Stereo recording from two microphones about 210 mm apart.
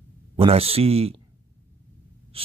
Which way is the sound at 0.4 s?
30° right (ahead or behind).